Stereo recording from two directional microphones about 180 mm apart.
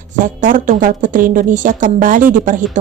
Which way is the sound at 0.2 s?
45° right (ahead or behind).